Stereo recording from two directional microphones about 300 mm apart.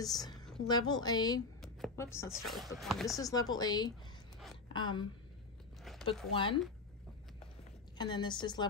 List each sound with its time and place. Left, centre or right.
0.0 s a woman's voice: centre
1.6 s a sound: centre
2.3 s speech: centre
3.2 s a woman's voice: centre
6.3 s a woman's voice: centre
8.0 s a woman's voice: centre